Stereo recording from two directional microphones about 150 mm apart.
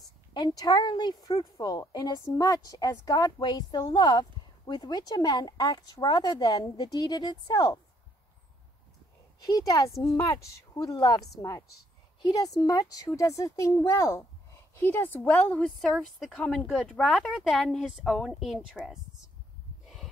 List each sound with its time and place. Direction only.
0.3 s a woman's voice: 30° left (ahead or behind)
9.4 s a woman's voice: 25° left (ahead or behind); by 18.9 s centre (ahead or behind)